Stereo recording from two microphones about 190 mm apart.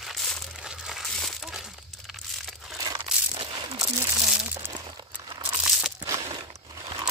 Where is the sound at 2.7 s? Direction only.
20° right (ahead or behind).